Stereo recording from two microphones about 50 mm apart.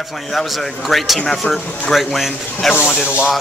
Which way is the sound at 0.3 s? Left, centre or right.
Centre.